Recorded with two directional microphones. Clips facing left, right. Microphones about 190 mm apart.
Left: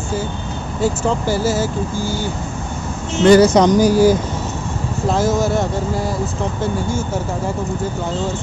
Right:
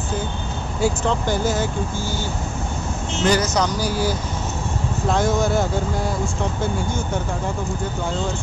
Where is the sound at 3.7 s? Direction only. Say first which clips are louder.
Left 11 dB; 45° left (ahead or behind).